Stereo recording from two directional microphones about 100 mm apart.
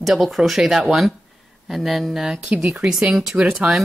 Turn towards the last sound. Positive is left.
turn(degrees=-5)  # may be behind; listen again after turning